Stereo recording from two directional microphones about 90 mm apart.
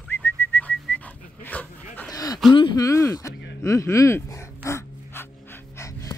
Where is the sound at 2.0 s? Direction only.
45° left (ahead or behind).